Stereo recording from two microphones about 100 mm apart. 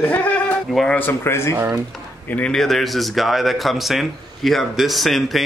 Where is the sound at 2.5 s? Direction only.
5° left (ahead or behind).